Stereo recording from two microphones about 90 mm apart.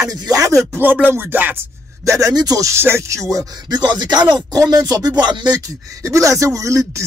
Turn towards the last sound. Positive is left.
turn(degrees=-35)  # may be behind; listen again after turning